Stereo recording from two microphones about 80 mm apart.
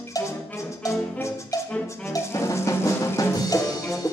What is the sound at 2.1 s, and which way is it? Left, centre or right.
Music, left.